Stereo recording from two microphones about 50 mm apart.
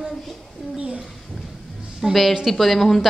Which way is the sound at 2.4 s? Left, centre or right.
Centre.